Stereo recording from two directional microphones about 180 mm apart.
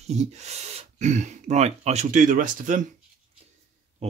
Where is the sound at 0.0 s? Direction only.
40° right (ahead or behind).